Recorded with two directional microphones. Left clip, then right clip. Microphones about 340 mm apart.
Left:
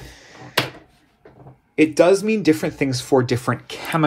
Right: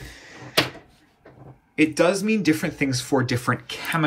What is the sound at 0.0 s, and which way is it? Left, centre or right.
Drawer open or close, centre.